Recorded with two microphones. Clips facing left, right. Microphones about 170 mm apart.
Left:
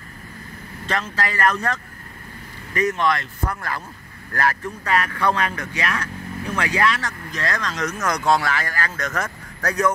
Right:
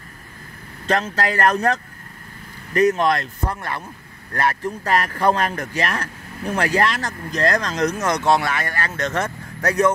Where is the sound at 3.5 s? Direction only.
25° right (ahead or behind).